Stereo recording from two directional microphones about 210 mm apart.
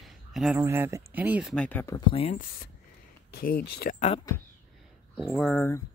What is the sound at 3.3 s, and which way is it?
Speech, 45° left (ahead or behind).